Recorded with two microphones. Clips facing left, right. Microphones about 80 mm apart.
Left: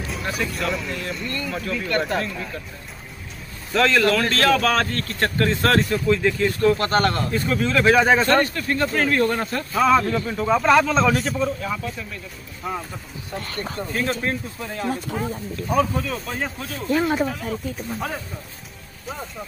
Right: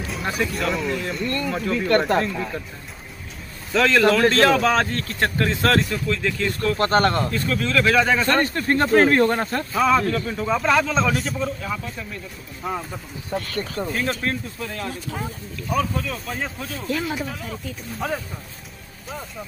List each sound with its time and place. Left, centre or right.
0.0 s a man's voice: centre
3.7 s a man's voice: centre
6.8 s speech: right
7.2 s speech: centre
8.5 s speech: right
9.7 s a man's voice: centre
13.8 s a man's voice: centre
14.2 s a man's voice: centre
16.7 s speech: centre
17.3 s a man's voice: centre